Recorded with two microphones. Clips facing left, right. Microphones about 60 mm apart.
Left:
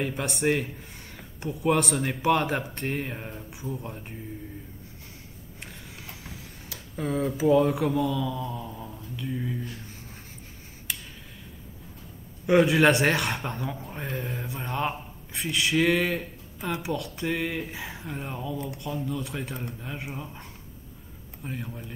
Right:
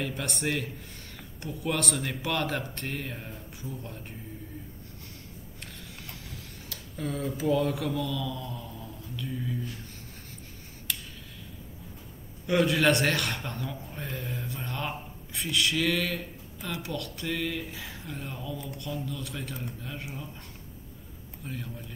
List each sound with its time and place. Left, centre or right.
0.1 s speech: centre
1.7 s speech: centre
5.6 s a sound: centre
9.3 s speech: left
10.9 s tick: centre
12.4 s speech: left
21.5 s speech: left